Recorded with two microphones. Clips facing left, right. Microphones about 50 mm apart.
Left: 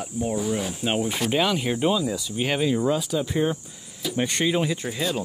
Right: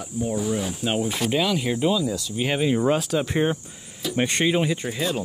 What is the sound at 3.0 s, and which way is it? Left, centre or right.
Speech, right.